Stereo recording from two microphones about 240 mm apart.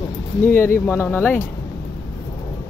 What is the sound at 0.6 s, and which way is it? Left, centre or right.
Speech, centre.